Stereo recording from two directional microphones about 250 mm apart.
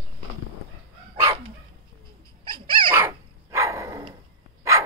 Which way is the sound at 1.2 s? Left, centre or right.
Centre.